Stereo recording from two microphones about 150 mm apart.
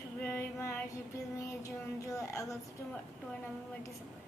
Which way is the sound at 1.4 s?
20° left (ahead or behind).